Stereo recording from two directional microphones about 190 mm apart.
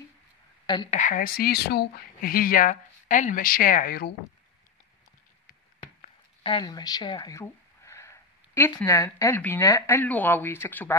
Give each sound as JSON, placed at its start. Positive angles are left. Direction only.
{"t": 0.8, "sound": "speech", "side_deg": 40}
{"t": 6.4, "sound": "speech", "side_deg": 25}